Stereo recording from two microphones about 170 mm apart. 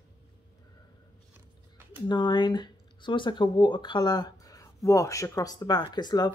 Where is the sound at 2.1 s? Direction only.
25° left (ahead or behind).